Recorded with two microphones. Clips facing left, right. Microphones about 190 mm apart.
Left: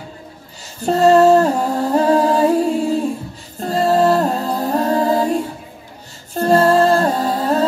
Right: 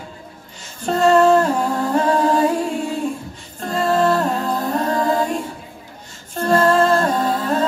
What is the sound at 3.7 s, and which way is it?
Music, 35° left (ahead or behind).